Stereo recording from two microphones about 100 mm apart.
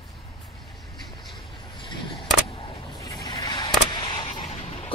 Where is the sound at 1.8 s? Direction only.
55° left (ahead or behind).